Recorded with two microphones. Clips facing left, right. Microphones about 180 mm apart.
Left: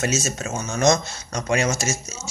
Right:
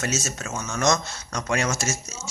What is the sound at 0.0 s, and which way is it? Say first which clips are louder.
Speech: left 4 dB; 20° left (ahead or behind).